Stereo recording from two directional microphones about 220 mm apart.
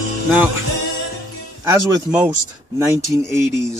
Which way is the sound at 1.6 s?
15° right (ahead or behind).